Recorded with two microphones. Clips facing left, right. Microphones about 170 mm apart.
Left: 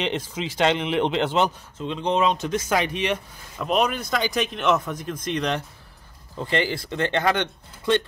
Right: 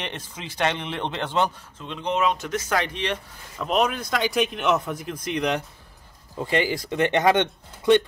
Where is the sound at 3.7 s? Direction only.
Centre (ahead or behind).